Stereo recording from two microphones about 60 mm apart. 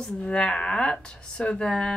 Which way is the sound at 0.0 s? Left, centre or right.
Centre.